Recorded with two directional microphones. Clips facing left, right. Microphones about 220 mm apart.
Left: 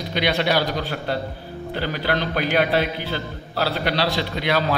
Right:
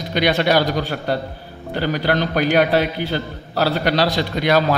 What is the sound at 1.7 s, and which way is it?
A man's voice, 45° right (ahead or behind).